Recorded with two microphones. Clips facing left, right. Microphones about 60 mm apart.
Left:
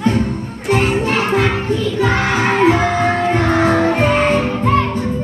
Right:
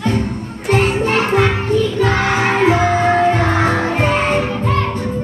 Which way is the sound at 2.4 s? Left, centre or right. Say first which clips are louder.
Left 2 dB; centre.